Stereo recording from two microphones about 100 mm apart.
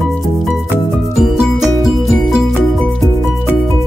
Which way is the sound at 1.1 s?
5° right (ahead or behind).